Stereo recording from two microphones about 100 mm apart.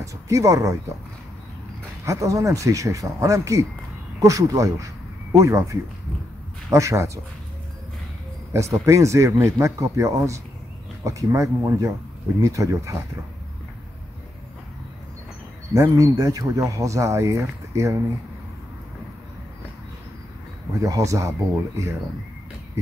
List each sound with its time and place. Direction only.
0.0 s speech: 30° right (ahead or behind)
2.0 s speech: 35° right (ahead or behind)
8.5 s speech: 30° right (ahead or behind)
15.7 s speech: 35° right (ahead or behind)
20.8 s speech: 35° right (ahead or behind)